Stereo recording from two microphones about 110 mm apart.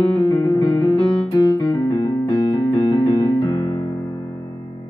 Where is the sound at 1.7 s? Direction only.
40° left (ahead or behind).